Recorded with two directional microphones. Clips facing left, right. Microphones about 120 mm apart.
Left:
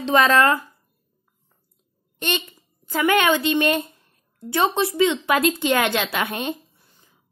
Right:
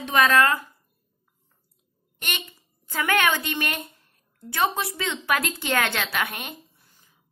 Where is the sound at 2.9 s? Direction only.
20° left (ahead or behind).